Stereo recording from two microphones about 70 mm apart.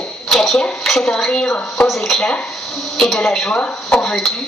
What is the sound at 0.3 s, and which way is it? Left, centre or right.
A woman's voice, centre.